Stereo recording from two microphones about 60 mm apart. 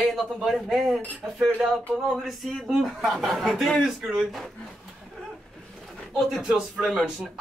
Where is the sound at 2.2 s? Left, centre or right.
Centre.